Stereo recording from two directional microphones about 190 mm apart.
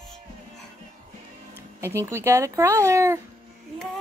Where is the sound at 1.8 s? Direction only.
15° right (ahead or behind).